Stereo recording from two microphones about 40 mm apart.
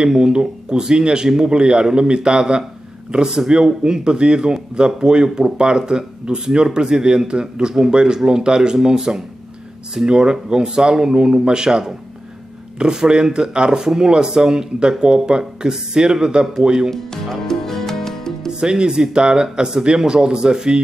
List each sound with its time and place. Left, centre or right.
0.0 s a man's voice: centre
16.9 s music: centre
18.6 s speech: right